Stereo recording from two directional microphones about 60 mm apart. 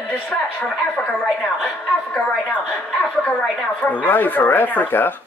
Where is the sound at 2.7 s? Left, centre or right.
Centre.